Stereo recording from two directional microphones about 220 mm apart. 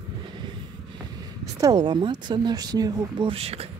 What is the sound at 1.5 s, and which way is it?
Speech, 20° right (ahead or behind).